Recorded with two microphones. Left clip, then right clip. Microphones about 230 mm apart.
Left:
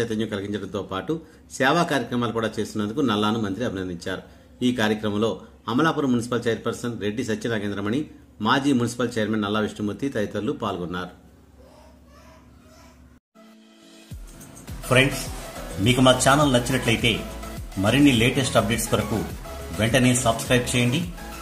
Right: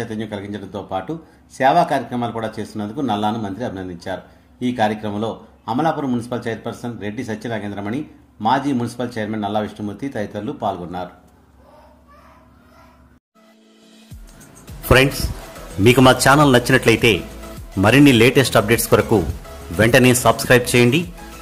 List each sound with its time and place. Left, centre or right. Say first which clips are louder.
0.0 s speech: left 1 dB; centre
4.7 s a man's voice: right 6 dB; right
5.8 s speech: right 1 dB; centre
14.4 s music: right 1 dB; centre
14.9 s a man's voice: right 5 dB; right